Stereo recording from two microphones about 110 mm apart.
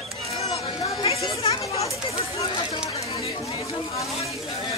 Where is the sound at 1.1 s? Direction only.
65° left (ahead or behind).